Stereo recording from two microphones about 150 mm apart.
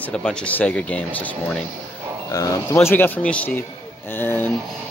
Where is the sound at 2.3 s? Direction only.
25° left (ahead or behind).